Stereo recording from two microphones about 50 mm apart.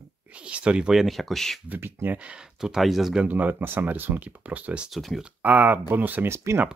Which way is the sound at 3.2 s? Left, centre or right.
Right.